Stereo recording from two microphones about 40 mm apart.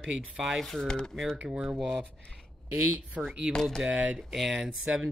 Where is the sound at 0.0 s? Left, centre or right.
Centre.